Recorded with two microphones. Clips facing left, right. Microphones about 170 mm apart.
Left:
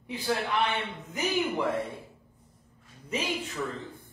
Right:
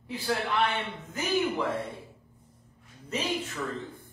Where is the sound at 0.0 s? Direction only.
20° left (ahead or behind).